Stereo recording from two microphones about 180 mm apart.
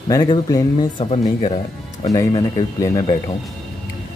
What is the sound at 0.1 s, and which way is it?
Speech, 20° left (ahead or behind).